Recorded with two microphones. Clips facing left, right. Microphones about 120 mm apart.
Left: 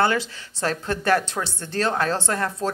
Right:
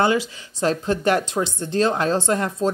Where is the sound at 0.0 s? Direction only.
15° right (ahead or behind).